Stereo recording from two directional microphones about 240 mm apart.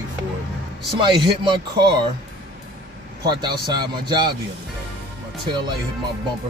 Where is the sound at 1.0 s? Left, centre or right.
Centre.